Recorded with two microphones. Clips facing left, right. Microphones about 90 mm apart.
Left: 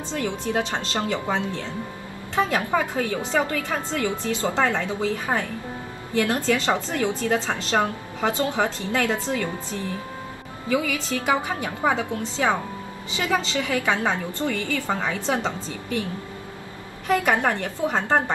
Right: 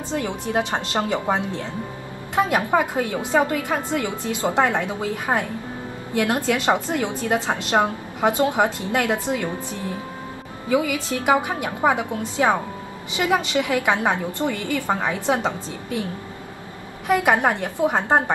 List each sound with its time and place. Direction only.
0.1 s a woman's voice: 20° right (ahead or behind)
2.7 s a woman's voice: 15° right (ahead or behind)
17.1 s a woman's voice: 15° right (ahead or behind)